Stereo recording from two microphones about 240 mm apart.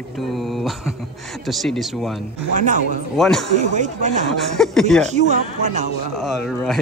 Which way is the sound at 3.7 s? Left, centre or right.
Right.